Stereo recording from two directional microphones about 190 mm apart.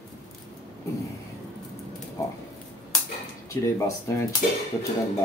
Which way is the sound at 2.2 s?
15° left (ahead or behind).